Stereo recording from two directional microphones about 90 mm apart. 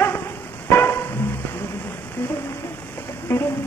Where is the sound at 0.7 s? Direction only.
25° left (ahead or behind).